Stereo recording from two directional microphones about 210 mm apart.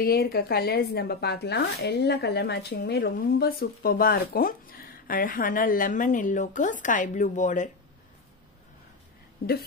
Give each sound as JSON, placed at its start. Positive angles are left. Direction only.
{"t": 0.0, "sound": "speech", "side_deg": 45}
{"t": 9.4, "sound": "speech", "side_deg": 45}